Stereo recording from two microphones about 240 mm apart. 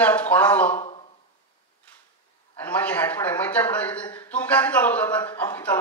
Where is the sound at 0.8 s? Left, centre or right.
Left.